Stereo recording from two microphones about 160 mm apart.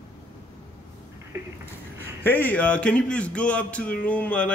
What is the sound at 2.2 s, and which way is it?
Speech, 10° left (ahead or behind).